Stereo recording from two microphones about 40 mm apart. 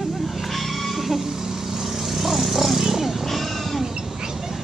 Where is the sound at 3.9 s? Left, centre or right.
Centre.